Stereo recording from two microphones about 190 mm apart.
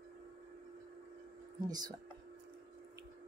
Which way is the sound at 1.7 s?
20° right (ahead or behind).